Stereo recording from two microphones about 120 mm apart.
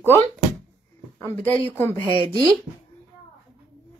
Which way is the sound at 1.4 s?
15° left (ahead or behind).